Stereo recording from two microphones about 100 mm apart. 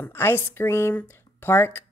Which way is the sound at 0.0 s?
25° left (ahead or behind).